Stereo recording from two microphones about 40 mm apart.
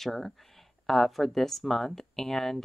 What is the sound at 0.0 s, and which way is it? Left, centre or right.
A woman's voice, centre.